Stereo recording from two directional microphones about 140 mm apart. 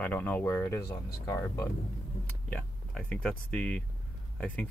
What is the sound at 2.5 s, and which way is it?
Speech, 10° left (ahead or behind).